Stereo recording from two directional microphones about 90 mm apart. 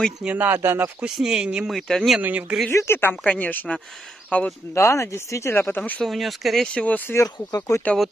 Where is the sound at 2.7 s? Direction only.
30° left (ahead or behind).